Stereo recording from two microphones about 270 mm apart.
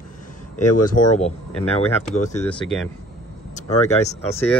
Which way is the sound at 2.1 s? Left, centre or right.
Left.